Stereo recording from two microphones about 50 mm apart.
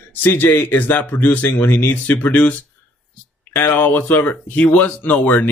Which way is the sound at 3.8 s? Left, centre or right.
Left.